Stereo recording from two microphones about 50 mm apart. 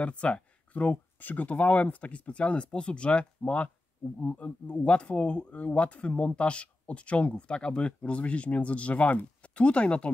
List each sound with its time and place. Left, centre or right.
0.0 s speech: left